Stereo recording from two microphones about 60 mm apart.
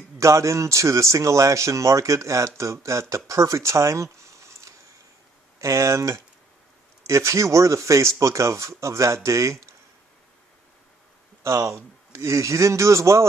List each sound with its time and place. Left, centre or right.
0.2 s speech: right
11.4 s speech: right